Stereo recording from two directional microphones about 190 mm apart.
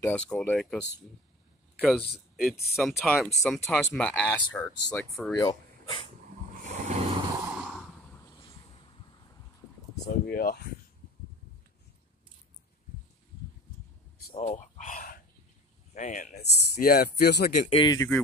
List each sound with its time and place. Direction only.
0.0 s speech: 10° left (ahead or behind)
1.8 s speech: 5° left (ahead or behind)
5.3 s speech: 20° left (ahead or behind)
6.5 s vehicle: 40° right (ahead or behind)
7.4 s a sound: 5° right (ahead or behind)
10.0 s speech: 55° left (ahead or behind)
14.3 s a sound: 35° left (ahead or behind)
15.9 s speech: 40° left (ahead or behind); by 17.5 s 60° left (ahead or behind)
17.5 s speech: 40° left (ahead or behind)
17.7 s speech: 20° left (ahead or behind)